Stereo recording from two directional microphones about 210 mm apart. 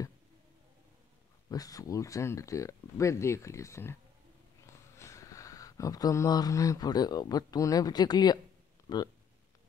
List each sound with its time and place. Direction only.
1.5 s speech: 15° left (ahead or behind)